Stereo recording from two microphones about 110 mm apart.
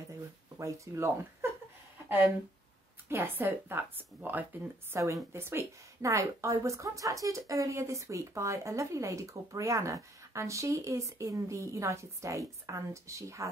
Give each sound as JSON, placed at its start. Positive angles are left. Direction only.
{"t": 0.6, "sound": "a woman's voice", "side_deg": -25}
{"t": 3.1, "sound": "a woman's voice", "side_deg": -20}